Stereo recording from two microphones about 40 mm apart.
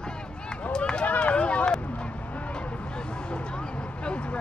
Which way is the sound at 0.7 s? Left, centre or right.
Left.